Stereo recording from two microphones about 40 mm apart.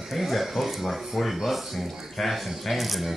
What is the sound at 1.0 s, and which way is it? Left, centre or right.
Speech, centre.